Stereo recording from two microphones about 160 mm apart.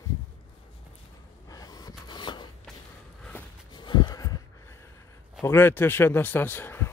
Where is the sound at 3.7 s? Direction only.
25° left (ahead or behind).